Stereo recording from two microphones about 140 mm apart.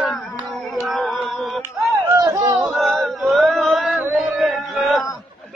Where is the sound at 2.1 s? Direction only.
25° right (ahead or behind).